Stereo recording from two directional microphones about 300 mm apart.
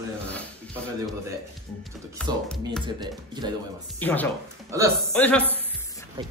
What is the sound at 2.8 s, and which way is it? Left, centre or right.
Speech, centre.